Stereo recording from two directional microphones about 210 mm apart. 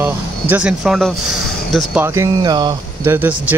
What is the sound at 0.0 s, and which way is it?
Speech, 5° right (ahead or behind).